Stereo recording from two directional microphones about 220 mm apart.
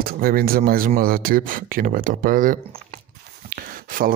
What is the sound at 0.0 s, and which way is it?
Speech, 40° right (ahead or behind).